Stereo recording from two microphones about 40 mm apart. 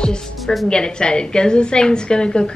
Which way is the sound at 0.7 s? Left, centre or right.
Left.